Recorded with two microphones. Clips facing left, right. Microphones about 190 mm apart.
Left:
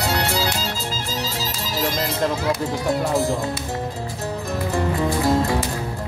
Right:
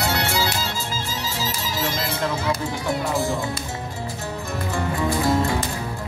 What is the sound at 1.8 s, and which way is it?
Music, 40° left (ahead or behind).